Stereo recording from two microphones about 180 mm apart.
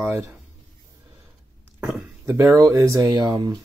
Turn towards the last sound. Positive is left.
turn(degrees=-25)  # may be behind; listen again after turning